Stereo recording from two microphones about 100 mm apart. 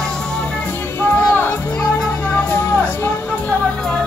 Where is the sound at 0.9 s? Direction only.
20° left (ahead or behind).